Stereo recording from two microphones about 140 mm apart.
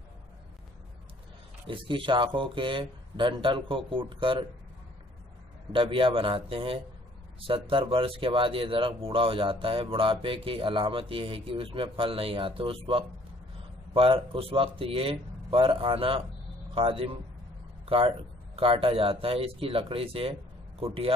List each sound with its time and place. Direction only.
1.7 s speech: 35° right (ahead or behind)
5.7 s a man's voice: 40° right (ahead or behind)